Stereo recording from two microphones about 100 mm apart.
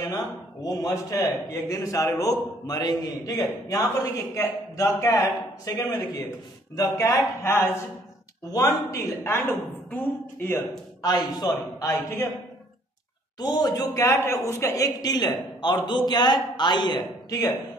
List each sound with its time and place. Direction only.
0.6 s a man's voice: 35° left (ahead or behind)
8.5 s a man's voice: 35° left (ahead or behind)
10.7 s a man's voice: 40° left (ahead or behind)
13.4 s a woman's voice: 45° left (ahead or behind)